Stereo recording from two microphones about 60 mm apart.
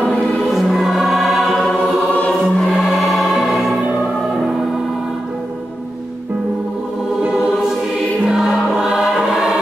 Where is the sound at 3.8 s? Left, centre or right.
Right.